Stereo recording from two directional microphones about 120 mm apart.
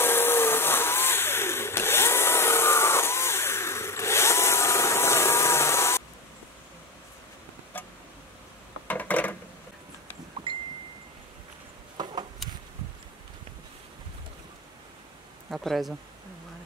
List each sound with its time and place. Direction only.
0.0 s vehicle: 20° left (ahead or behind)
7.7 s vehicle: 15° left (ahead or behind)
8.8 s a sound: 15° left (ahead or behind)
10.5 s chime: 45° right (ahead or behind)
12.0 s a sound: 35° right (ahead or behind)
15.5 s speech: centre (ahead or behind)